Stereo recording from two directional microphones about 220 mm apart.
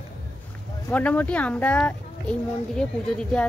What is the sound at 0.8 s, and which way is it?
Speech, 5° left (ahead or behind).